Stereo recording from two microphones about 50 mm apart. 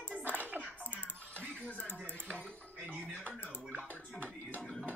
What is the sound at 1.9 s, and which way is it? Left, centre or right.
Dishes, right.